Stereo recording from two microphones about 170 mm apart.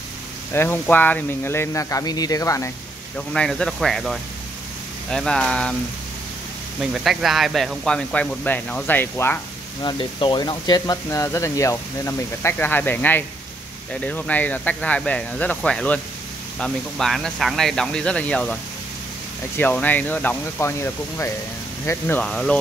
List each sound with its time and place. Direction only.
0.5 s speech: 15° left (ahead or behind)
3.2 s speech: 5° left (ahead or behind)
6.8 s speech: centre (ahead or behind)
9.8 s speech: 30° left (ahead or behind); by 22.6 s 5° left (ahead or behind)